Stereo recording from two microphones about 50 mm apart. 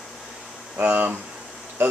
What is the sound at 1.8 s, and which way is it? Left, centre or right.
Speech, right.